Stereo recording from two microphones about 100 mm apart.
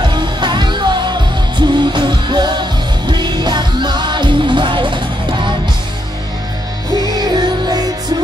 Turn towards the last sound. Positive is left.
turn(degrees=-45)  # may be behind; listen again after turning